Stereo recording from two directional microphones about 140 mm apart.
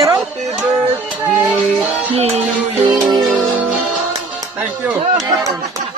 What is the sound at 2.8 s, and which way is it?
Music, 30° right (ahead or behind).